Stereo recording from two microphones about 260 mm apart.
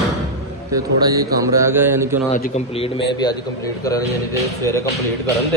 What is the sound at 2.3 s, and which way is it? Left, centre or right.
Speech, left.